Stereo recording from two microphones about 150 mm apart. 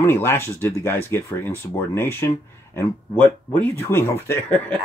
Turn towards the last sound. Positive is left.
turn(degrees=15)  # may be behind; listen again after turning